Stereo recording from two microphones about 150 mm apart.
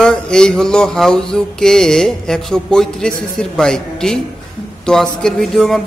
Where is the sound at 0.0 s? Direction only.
5° left (ahead or behind).